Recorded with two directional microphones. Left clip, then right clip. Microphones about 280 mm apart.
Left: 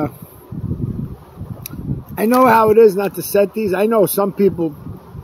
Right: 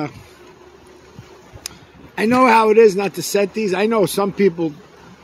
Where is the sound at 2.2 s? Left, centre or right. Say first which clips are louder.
Left 1 dB; centre.